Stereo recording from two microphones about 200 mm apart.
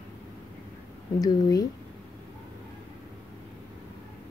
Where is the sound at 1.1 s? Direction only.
20° left (ahead or behind).